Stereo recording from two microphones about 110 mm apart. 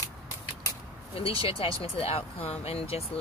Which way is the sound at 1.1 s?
55° left (ahead or behind).